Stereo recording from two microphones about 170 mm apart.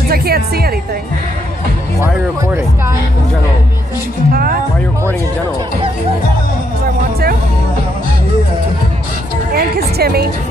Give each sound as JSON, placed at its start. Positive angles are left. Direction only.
{"t": 0.1, "sound": "speech", "side_deg": -65}
{"t": 4.3, "sound": "speech", "side_deg": -60}
{"t": 9.6, "sound": "a woman's voice", "side_deg": -65}